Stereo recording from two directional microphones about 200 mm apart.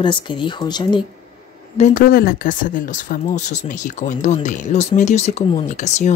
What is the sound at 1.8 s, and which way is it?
Speech, 45° left (ahead or behind).